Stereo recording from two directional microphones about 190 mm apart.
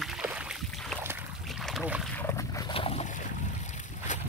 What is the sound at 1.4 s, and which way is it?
Boat, centre (ahead or behind).